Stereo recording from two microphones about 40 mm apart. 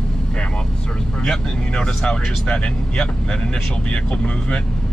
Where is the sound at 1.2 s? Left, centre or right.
Centre.